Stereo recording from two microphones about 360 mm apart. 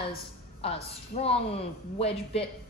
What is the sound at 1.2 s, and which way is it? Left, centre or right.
A woman's voice, centre.